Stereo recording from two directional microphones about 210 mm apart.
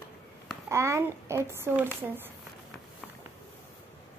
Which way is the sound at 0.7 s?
15° right (ahead or behind).